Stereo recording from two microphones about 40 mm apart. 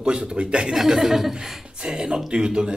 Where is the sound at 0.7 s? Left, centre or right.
Centre.